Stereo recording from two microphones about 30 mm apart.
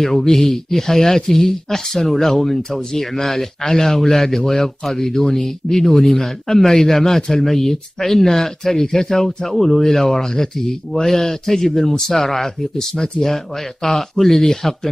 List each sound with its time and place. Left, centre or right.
0.0 s speech: centre
12.7 s speech: left
13.8 s speech: centre